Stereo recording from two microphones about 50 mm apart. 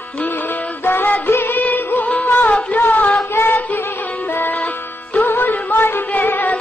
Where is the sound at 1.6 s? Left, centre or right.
Left.